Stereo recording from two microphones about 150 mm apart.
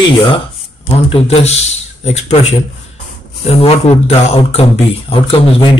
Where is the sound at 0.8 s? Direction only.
40° left (ahead or behind).